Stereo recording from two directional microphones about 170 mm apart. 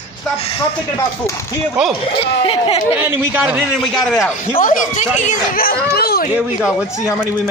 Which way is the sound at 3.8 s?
Centre (ahead or behind).